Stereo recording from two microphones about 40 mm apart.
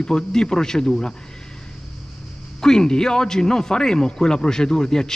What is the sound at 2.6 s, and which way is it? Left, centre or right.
Speech, centre.